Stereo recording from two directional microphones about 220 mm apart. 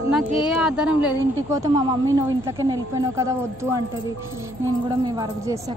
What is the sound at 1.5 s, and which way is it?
A woman's voice, 15° right (ahead or behind).